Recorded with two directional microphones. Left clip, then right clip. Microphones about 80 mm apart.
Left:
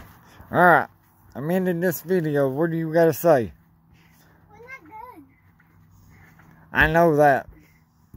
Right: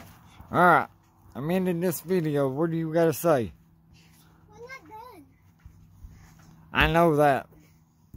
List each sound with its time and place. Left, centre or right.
0.3 s a sound: centre
1.5 s speech: centre
6.5 s speech: centre